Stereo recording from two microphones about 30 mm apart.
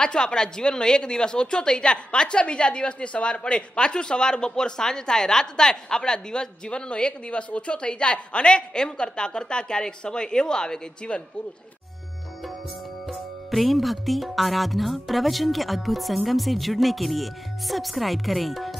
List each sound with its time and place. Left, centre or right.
0.0 s a woman's voice: left
13.5 s speech: centre